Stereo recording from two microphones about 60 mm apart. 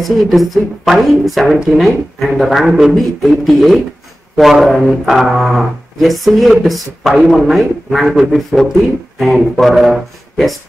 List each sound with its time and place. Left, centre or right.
0.0 s speech: centre
8.5 s speech: centre
9.2 s speech: centre